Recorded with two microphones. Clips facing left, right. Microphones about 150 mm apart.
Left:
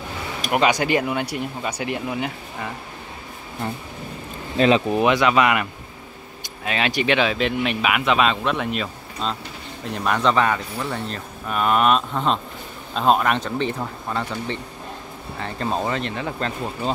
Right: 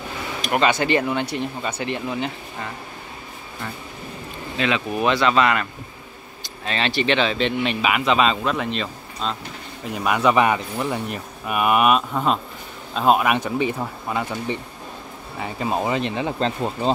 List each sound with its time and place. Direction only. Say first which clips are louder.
0.4 s speech: even; 10° left (ahead or behind)
4.6 s speech: left 6 dB; 35° left (ahead or behind)
5.0 s speech: right 2 dB; 15° left (ahead or behind)
9.9 s speech: right 2 dB; 10° right (ahead or behind)
16.3 s speech: right 4 dB; 30° right (ahead or behind)